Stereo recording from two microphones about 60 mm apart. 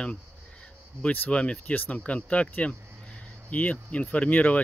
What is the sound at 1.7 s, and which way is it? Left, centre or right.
Speech, left.